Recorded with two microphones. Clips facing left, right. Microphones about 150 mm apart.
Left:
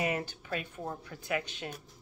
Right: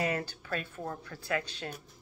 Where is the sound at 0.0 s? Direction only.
20° left (ahead or behind).